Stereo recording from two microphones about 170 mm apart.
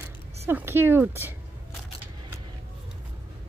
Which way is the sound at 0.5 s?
15° right (ahead or behind).